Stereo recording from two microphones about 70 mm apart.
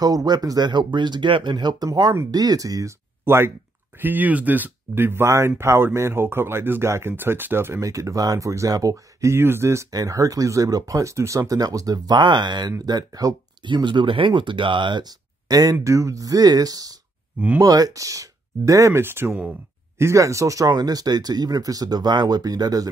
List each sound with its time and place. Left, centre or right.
0.0 s speech: right
2.3 s speech: right
3.3 s speech: right
7.8 s speech: right
9.8 s speech: right
12.8 s speech: right
14.9 s speech: right
15.8 s speech: right
20.0 s speech: right